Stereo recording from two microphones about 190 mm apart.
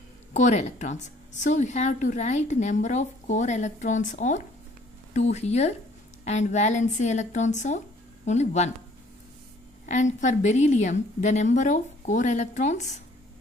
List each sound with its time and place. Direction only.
0.3 s a woman's voice: 40° left (ahead or behind)
9.8 s a woman's voice: 40° left (ahead or behind)